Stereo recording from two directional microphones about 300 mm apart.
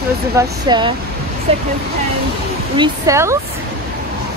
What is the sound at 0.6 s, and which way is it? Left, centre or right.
Speech, centre.